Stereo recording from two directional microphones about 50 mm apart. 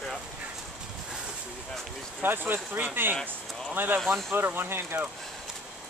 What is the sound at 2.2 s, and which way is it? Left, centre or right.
Speech, right.